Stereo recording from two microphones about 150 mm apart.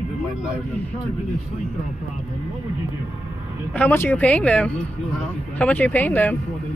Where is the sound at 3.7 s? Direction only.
10° left (ahead or behind).